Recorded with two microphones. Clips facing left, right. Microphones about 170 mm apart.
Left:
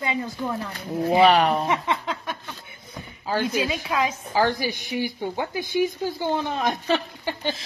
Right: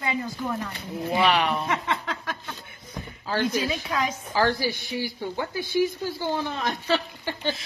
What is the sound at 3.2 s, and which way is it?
Speech, 15° left (ahead or behind).